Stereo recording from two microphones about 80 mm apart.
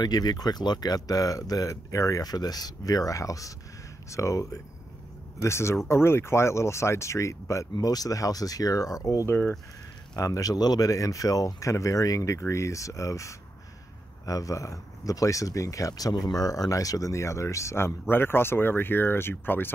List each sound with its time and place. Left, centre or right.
0.0 s speech: left
7.7 s speech: left
9.3 s speech: left
10.1 s speech: left